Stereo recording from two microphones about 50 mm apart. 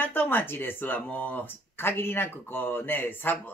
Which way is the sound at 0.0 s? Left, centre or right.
Left.